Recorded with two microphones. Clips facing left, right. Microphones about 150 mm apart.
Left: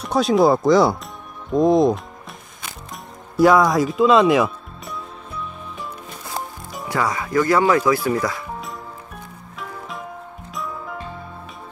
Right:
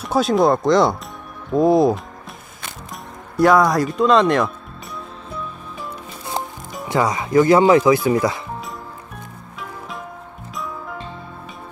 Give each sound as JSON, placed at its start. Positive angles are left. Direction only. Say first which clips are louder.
{"t": 0.0, "sound": "speech", "louder": "even", "side_deg": 0}
{"t": 2.9, "sound": "music", "louder": "right 2 dB", "side_deg": 0}
{"t": 6.9, "sound": "speech", "louder": "right 4 dB", "side_deg": -20}
{"t": 9.6, "sound": "music", "louder": "even", "side_deg": 0}